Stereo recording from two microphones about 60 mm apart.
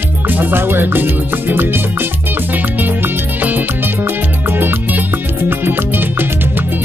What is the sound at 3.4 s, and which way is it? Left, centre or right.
Music, right.